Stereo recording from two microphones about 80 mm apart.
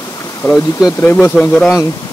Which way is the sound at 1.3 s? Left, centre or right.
Centre.